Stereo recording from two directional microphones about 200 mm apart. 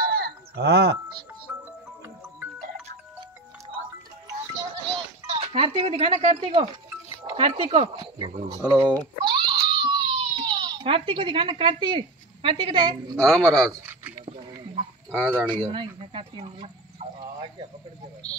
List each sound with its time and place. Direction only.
0.0 s sheep: 50° right (ahead or behind)
5.3 s speech: 25° right (ahead or behind)
8.5 s speech: 15° right (ahead or behind)
9.2 s baby cry: 20° right (ahead or behind)
13.2 s speech: centre (ahead or behind)
13.7 s a sound: 10° right (ahead or behind)
14.2 s a sound: 25° right (ahead or behind)
15.4 s speech: 25° right (ahead or behind)